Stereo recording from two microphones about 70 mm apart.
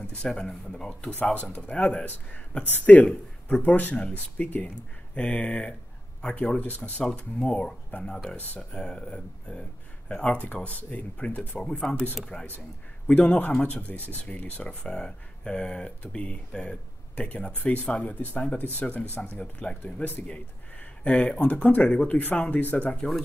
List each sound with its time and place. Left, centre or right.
0.0 s speech: centre
1.2 s speech: left